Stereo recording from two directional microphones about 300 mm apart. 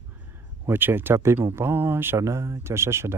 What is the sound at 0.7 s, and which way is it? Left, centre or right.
Speech, centre.